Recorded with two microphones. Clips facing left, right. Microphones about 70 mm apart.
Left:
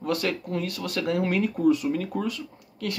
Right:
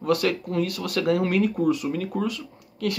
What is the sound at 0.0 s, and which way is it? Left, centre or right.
Speech, left.